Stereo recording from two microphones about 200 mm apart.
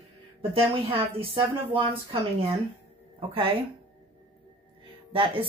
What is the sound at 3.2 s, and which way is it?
Speech, 25° right (ahead or behind).